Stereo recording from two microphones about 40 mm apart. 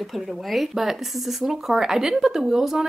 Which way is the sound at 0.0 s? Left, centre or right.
Centre.